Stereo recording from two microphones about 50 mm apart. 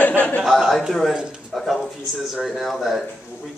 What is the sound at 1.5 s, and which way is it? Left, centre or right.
Speech, centre.